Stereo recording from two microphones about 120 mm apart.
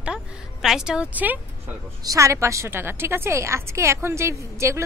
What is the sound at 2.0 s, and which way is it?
A woman's voice, 30° right (ahead or behind).